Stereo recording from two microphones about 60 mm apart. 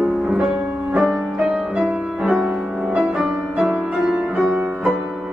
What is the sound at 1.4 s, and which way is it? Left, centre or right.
Music, centre.